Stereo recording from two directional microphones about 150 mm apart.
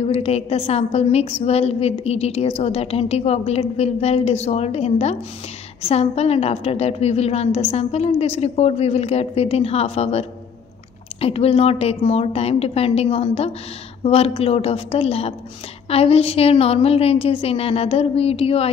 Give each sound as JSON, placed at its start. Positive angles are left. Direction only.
{"t": 0.0, "sound": "a woman's voice", "side_deg": 45}